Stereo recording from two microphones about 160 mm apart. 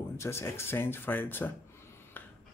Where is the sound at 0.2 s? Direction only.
15° left (ahead or behind).